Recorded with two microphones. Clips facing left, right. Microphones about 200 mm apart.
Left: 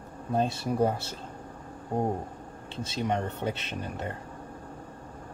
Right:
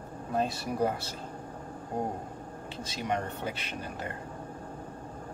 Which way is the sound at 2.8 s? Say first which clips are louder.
Left 3 dB; 25° left (ahead or behind).